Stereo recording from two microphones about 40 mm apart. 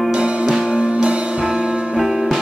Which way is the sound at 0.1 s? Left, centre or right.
Right.